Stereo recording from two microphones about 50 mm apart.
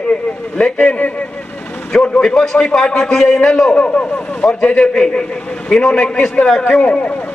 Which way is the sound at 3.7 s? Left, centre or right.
Left.